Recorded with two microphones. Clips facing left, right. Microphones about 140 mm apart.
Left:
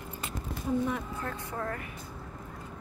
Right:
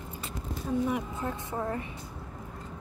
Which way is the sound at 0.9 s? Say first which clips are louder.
Right 3 dB; 15° right (ahead or behind).